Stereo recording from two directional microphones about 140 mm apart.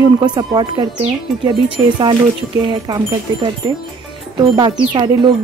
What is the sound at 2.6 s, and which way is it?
Speech, 35° right (ahead or behind).